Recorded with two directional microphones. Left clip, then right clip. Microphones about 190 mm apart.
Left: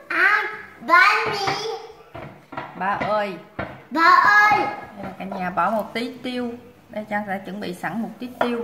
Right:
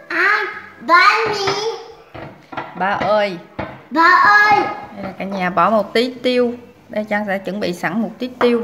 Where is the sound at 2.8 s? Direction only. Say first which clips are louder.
Right 6 dB; 45° right (ahead or behind).